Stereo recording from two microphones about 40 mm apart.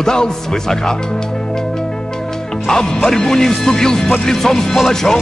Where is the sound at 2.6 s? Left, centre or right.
Centre.